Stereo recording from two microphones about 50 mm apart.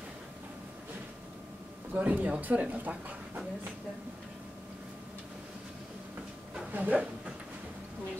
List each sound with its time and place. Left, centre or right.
2.0 s speech: right
6.7 s speech: right